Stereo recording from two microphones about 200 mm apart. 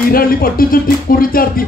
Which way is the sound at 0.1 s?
45° left (ahead or behind).